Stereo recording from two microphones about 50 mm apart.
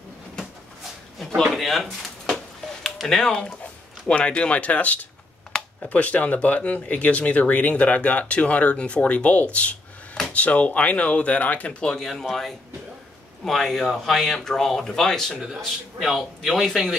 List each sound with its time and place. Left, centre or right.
1.4 s a sound: centre
4.1 s speech: left
11.8 s speech: centre
15.5 s a man's voice: centre